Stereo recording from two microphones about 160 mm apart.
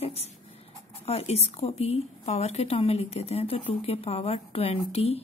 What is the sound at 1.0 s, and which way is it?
A woman's voice, 40° left (ahead or behind).